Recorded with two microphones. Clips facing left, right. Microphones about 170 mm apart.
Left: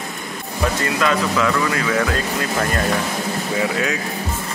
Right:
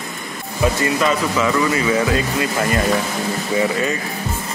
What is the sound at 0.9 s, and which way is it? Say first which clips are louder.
Speech: right 1 dB; 5° right (ahead or behind).